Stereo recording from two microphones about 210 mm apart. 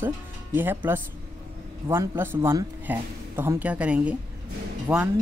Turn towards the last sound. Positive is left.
turn(degrees=-5)  # may be behind; listen again after turning